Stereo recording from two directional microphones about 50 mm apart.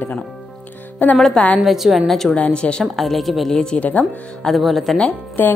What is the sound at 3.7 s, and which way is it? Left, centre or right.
Speech, left.